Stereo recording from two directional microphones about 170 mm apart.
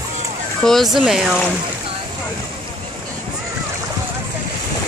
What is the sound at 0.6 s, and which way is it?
Speech, centre (ahead or behind).